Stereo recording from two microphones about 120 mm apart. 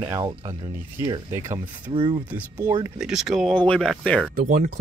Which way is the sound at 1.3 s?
20° right (ahead or behind).